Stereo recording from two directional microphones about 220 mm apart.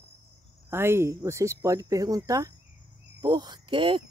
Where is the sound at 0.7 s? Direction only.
10° right (ahead or behind).